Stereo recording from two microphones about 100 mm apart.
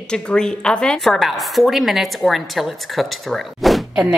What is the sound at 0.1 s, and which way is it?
A woman's voice, 10° left (ahead or behind).